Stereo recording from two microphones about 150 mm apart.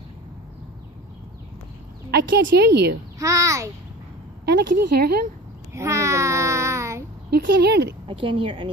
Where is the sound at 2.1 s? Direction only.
90° right.